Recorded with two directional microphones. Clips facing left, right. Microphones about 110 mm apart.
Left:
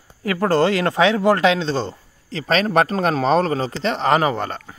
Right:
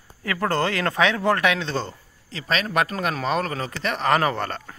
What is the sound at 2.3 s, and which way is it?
Speech, 35° left (ahead or behind).